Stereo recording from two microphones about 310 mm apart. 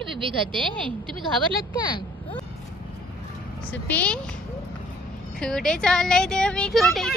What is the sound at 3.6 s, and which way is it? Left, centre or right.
Speech, centre.